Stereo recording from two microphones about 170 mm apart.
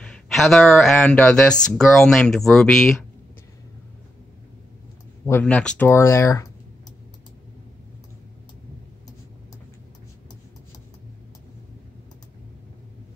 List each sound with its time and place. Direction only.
0.0 s speech: 5° left (ahead or behind)
5.2 s speech: 10° left (ahead or behind)